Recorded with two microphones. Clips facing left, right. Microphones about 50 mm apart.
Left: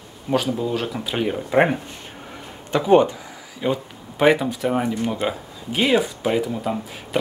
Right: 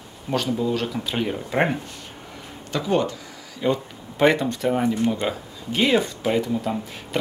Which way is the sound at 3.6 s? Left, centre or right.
Centre.